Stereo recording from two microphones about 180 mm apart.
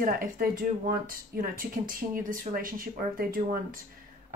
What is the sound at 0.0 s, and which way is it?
Speech, 50° right (ahead or behind).